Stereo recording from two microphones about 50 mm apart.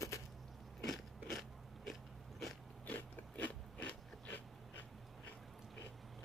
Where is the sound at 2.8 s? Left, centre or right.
Left.